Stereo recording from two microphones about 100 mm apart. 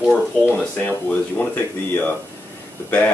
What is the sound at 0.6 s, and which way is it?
Speech, 10° left (ahead or behind).